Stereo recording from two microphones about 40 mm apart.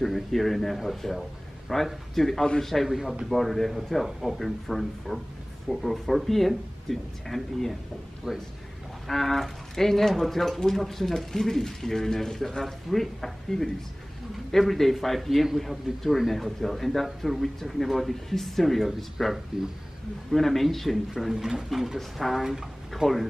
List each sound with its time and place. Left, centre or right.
0.0 s a man's voice: centre
2.9 s speech: centre
3.3 s a man's voice: centre
8.3 s speech: centre
9.0 s a man's voice: centre
21.4 s a man's voice: centre
23.0 s speech: centre